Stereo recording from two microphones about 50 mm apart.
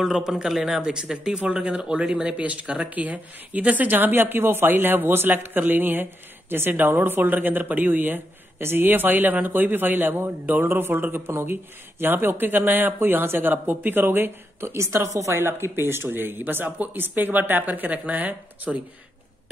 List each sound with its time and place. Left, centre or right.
0.0 s speech: centre; by 15.4 s right
15.4 s speech: right